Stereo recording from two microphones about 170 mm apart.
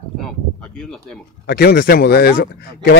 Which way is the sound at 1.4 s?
70° left (ahead or behind).